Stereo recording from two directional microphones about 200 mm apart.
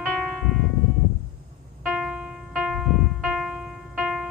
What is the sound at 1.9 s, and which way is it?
Music, centre (ahead or behind).